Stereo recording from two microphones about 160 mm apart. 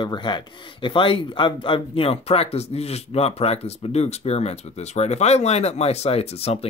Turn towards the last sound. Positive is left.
turn(degrees=40)  # may be behind; listen again after turning